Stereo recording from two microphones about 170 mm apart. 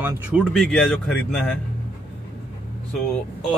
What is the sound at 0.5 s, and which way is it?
Speech, 5° left (ahead or behind).